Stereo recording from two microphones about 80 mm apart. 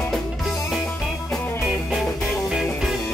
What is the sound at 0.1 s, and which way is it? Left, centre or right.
Music, centre.